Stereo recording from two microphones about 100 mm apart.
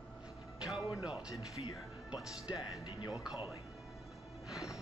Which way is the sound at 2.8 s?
45° left (ahead or behind).